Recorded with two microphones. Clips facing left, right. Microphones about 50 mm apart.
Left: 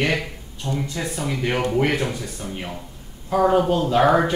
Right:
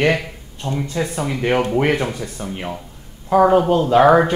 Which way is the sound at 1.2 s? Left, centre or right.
Right.